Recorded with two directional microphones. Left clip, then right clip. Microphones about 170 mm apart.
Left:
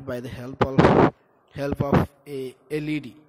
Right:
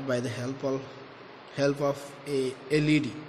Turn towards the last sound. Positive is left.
turn(degrees=45)  # may be behind; listen again after turning